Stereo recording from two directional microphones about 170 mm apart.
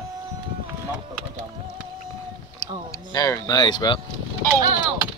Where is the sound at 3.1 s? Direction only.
20° left (ahead or behind).